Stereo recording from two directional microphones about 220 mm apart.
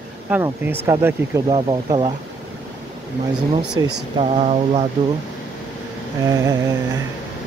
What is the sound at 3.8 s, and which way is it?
Speech, 20° right (ahead or behind).